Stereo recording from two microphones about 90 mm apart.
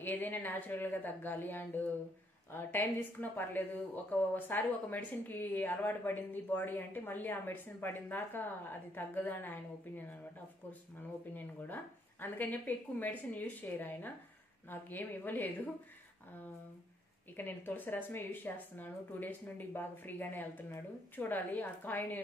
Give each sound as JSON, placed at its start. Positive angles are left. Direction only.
{"t": 0.0, "sound": "speech", "side_deg": 20}
{"t": 17.4, "sound": "speech", "side_deg": 20}